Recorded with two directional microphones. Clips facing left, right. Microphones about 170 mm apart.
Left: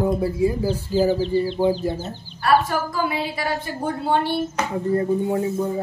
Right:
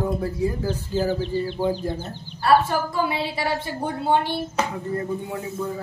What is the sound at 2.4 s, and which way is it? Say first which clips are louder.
A woman's voice: even; 25° right (ahead or behind).